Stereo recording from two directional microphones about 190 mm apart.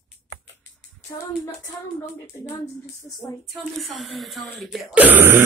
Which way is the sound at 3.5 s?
Centre (ahead or behind).